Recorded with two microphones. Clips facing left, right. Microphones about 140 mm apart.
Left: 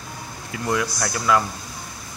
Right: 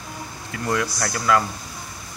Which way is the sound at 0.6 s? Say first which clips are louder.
Even; 10° left (ahead or behind).